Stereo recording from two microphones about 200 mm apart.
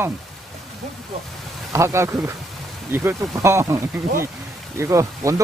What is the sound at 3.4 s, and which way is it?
Speech, 15° right (ahead or behind).